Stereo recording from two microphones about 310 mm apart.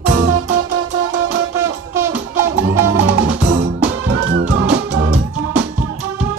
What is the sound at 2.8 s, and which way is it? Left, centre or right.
Music, right.